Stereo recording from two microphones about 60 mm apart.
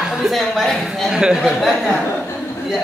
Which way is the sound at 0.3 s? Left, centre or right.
Centre.